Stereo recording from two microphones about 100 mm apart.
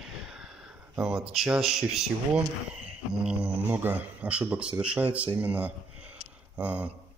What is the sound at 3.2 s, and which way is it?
Speech, 15° right (ahead or behind).